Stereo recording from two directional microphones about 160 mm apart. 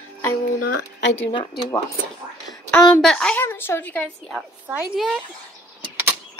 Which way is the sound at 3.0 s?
5° left (ahead or behind).